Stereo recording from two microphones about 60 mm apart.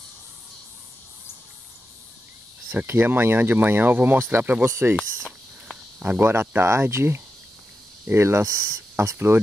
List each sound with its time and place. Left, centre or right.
2.7 s speech: right
4.6 s speech: right
4.9 s a sound: centre
6.0 s speech: right
9.1 s speech: right